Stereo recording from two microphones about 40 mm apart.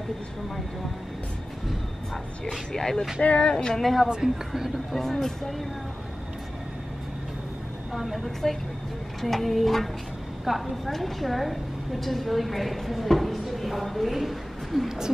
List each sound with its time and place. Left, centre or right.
2.7 s speech: centre
3.2 s speech: left
3.5 s speech: centre
3.8 s a woman's voice: centre
4.5 s speech: centre
4.9 s speech: centre
7.9 s a woman's voice: centre